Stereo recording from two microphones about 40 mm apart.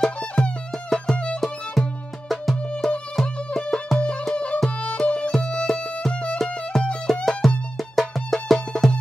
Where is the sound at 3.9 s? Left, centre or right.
Centre.